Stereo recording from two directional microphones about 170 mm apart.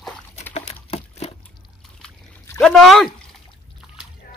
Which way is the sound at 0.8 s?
35° left (ahead or behind).